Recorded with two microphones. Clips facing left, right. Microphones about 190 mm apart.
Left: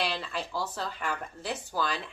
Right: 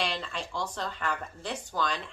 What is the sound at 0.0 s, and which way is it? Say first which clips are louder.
Speech: left 1 dB; 5° left (ahead or behind).